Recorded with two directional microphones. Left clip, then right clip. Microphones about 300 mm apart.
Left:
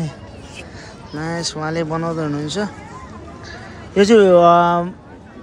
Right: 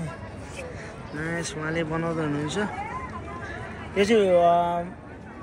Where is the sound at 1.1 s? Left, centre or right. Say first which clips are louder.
Left 7 dB; centre.